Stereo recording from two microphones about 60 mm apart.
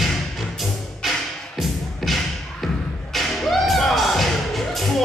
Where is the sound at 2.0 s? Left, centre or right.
Centre.